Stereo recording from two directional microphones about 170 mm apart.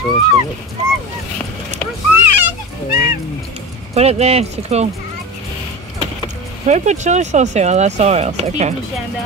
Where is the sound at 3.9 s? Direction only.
40° right (ahead or behind).